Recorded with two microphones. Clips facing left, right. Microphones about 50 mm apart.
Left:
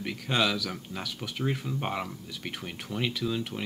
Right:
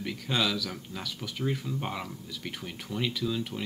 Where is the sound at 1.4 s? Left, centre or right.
Centre.